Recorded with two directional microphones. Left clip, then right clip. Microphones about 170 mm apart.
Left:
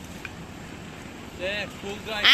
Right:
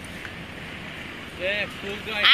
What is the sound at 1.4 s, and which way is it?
Speech, 45° left (ahead or behind).